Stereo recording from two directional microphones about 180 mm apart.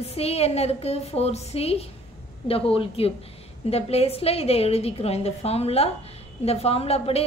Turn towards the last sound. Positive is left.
turn(degrees=35)  # may be behind; listen again after turning